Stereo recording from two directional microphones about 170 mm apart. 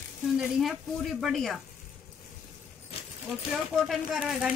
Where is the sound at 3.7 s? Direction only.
Centre (ahead or behind).